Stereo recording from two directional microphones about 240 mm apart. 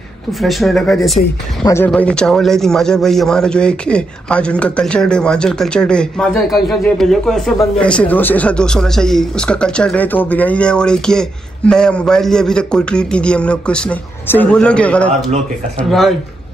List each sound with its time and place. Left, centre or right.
0.3 s a man's voice: centre
1.6 s a man's voice: centre